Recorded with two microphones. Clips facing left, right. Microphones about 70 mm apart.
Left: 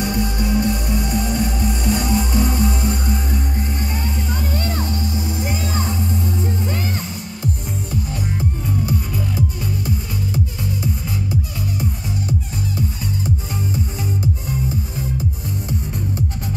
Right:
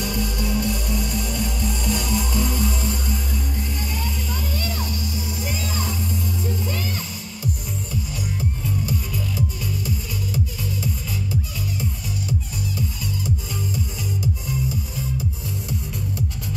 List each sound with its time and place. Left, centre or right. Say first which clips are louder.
0.0 s music: left 4 dB; left
9.8 s music: left 4 dB; left